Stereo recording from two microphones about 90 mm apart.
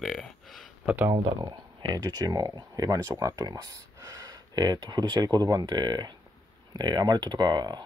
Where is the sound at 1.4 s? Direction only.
50° right (ahead or behind).